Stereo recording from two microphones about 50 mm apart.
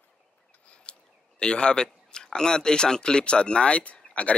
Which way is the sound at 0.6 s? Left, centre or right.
Left.